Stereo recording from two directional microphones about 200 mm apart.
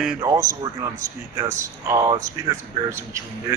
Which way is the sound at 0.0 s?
5° right (ahead or behind).